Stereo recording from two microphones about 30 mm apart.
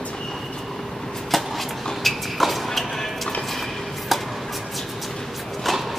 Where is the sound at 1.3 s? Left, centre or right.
Centre.